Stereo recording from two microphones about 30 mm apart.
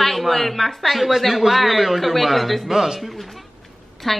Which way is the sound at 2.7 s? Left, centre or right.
Centre.